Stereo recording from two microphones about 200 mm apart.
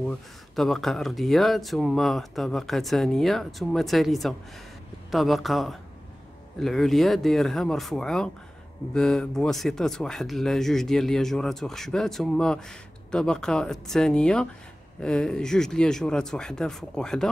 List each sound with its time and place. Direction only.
0.1 s speech: centre (ahead or behind)